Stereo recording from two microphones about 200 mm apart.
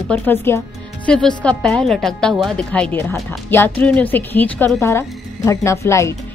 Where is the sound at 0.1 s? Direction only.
10° left (ahead or behind).